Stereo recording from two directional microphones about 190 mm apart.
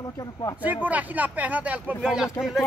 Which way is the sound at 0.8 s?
10° right (ahead or behind).